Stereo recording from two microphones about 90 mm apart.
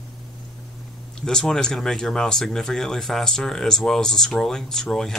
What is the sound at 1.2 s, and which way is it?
Speech, 5° left (ahead or behind).